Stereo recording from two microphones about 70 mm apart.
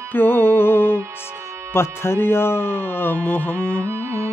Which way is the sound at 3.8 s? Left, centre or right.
Right.